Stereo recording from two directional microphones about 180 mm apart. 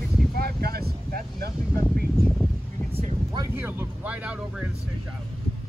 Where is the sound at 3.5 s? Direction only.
10° right (ahead or behind).